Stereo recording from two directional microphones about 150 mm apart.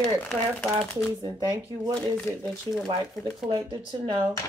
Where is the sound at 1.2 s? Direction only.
30° right (ahead or behind).